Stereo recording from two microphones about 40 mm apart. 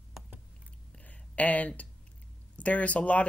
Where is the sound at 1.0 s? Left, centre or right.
Left.